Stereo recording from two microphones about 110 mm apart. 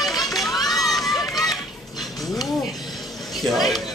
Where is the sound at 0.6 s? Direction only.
Centre (ahead or behind).